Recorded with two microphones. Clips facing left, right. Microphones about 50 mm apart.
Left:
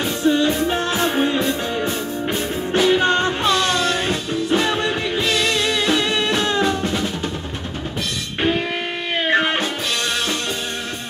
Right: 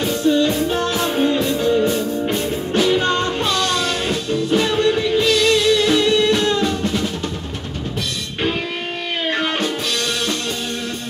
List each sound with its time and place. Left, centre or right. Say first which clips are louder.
0.2 s music: even; left
2.0 s music: right 3 dB; centre
4.6 s music: right 4 dB; left
9.3 s music: left 3 dB; left